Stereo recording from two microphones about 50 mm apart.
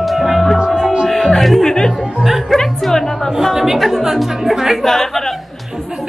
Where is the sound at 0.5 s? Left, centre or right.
Centre.